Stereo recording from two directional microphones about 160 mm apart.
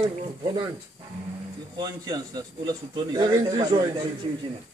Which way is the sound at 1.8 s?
25° right (ahead or behind).